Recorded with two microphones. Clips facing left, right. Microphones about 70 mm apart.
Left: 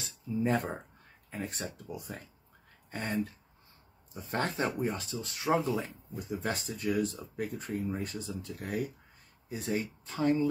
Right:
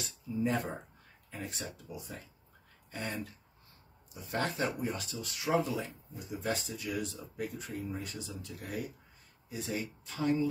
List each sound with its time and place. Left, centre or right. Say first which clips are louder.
0.0 s speech: left 2 dB; left
6.1 s speech: left 1 dB; left